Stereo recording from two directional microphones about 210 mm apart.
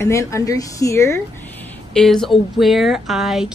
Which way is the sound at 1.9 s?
Centre (ahead or behind).